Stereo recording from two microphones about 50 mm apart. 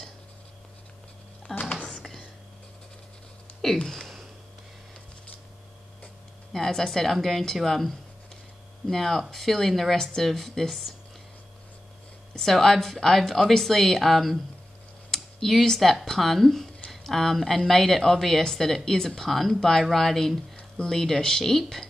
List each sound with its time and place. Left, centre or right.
1.6 s whispering: left
2.0 s whispering: centre
3.6 s a woman's voice: centre
6.5 s a woman's voice: centre
12.4 s a woman's voice: centre
15.1 s computer keyboard: centre
15.6 s a woman's voice: centre
20.5 s speech: centre